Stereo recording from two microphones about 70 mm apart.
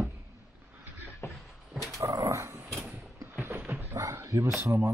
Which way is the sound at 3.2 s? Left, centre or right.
Right.